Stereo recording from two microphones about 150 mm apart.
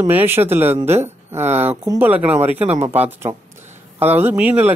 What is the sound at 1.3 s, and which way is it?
Speech, 45° right (ahead or behind).